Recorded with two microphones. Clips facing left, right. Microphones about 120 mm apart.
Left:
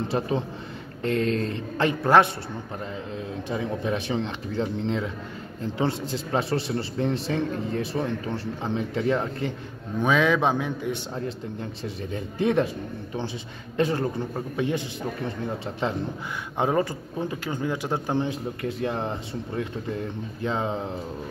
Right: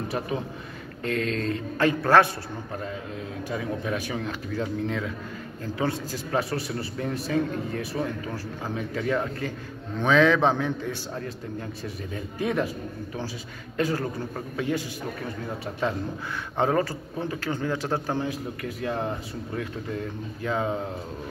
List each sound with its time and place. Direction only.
0.1 s a man's voice: 30° left (ahead or behind)
3.4 s a man's voice: 25° left (ahead or behind)
9.9 s a man's voice: 15° left (ahead or behind)
13.7 s a man's voice: 25° left (ahead or behind)